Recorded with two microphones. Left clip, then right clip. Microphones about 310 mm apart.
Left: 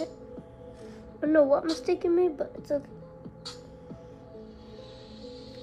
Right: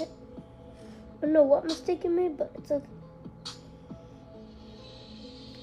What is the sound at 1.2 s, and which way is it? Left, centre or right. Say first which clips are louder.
Music: even; left.